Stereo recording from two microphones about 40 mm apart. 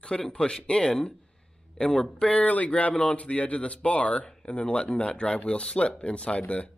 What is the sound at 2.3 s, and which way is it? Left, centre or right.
Speech, left.